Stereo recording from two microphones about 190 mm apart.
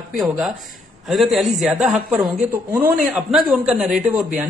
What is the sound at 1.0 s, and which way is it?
A man's voice, centre (ahead or behind).